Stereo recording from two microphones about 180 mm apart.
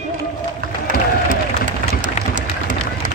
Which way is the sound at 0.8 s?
45° right (ahead or behind).